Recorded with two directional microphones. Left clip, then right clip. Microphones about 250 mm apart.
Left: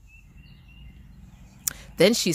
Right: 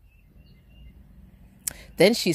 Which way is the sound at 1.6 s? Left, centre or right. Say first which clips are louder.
Right 1 dB; centre.